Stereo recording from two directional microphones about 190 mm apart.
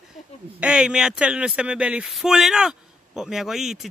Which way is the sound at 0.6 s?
5° right (ahead or behind).